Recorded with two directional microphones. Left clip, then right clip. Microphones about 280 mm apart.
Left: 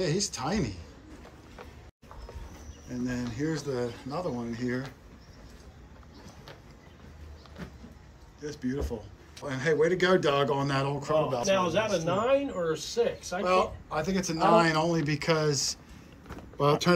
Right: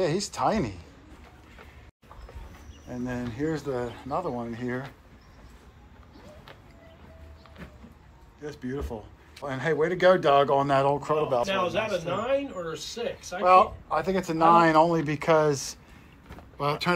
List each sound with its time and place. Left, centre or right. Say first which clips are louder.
0.0 s speech: right 5 dB; centre
2.9 s speech: right 1 dB; centre
8.4 s speech: even; centre
12.3 s speech: left 3 dB; left
13.4 s speech: right 8 dB; centre